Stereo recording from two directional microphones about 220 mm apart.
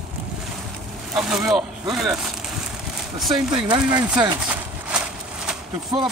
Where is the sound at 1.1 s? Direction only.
Centre (ahead or behind).